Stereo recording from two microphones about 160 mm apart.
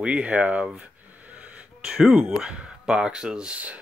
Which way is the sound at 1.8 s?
5° right (ahead or behind).